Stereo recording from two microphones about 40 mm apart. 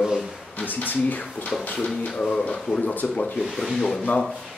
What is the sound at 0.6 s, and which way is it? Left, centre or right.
Speech, left.